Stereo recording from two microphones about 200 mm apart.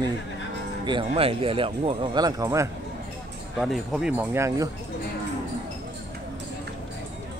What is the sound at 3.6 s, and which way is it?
Speech, centre (ahead or behind).